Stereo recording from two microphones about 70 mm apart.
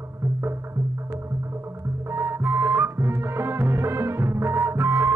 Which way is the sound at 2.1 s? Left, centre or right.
Right.